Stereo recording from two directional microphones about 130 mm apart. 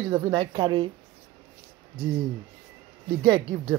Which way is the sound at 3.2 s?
35° right (ahead or behind).